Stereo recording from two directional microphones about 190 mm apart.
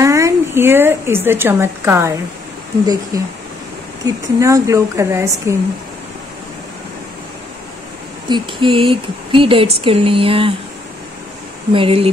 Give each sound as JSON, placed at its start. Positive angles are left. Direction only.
{"t": 0.0, "sound": "speech", "side_deg": -15}
{"t": 8.3, "sound": "speech", "side_deg": -25}
{"t": 11.7, "sound": "speech", "side_deg": -30}